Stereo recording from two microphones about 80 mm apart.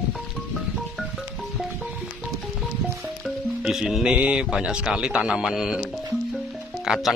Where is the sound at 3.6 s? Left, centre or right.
Centre.